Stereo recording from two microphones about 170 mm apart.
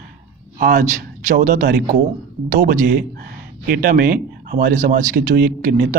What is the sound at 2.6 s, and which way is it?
Speech, 65° right (ahead or behind).